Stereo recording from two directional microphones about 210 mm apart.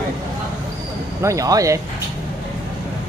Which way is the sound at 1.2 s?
15° right (ahead or behind).